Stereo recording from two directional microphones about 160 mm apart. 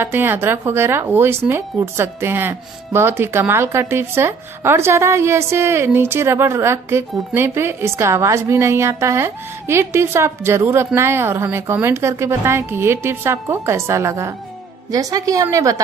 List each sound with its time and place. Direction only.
0.0 s a woman's voice: 15° right (ahead or behind)